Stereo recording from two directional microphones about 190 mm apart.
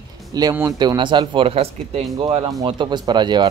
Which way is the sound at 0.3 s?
20° right (ahead or behind).